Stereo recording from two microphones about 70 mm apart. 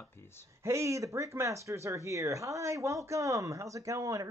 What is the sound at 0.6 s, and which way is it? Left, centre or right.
Speech, right.